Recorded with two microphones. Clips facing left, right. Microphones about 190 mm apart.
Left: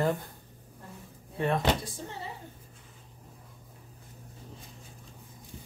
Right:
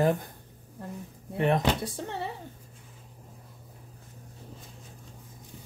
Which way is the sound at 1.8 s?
65° right (ahead or behind).